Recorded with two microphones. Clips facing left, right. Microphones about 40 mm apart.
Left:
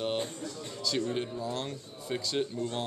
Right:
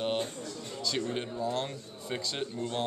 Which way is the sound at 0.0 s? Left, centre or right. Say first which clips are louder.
Right 1 dB; centre.